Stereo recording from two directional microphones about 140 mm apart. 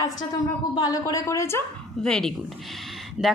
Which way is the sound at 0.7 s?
25° left (ahead or behind).